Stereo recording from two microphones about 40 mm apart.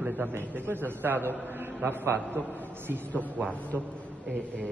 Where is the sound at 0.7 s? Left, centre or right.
Right.